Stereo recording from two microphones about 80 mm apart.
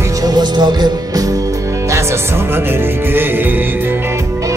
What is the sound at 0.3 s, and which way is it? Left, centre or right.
Music, right.